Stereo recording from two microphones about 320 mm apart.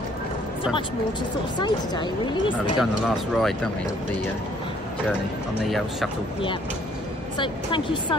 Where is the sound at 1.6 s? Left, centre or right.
Centre.